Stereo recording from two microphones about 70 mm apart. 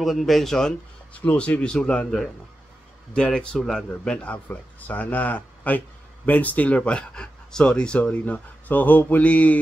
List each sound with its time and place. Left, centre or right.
0.0 s speech: centre
1.2 s speech: centre